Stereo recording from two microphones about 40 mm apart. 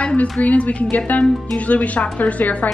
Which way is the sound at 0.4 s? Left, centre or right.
Left.